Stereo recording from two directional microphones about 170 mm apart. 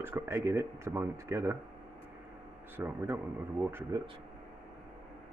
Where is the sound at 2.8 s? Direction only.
10° right (ahead or behind).